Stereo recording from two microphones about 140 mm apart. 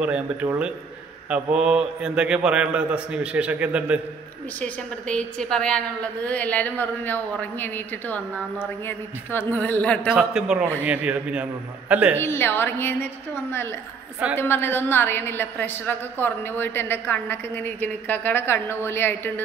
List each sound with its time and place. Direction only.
0.0 s a man's voice: 10° right (ahead or behind)
4.6 s a woman's voice: 5° left (ahead or behind)
10.1 s a man's voice: 5° right (ahead or behind)
12.2 s a woman's voice: 15° left (ahead or behind)